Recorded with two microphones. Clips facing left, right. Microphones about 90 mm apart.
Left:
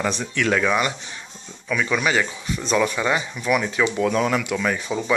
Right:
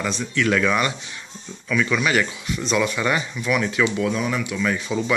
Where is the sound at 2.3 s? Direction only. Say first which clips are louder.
Left 1 dB; 35° left (ahead or behind).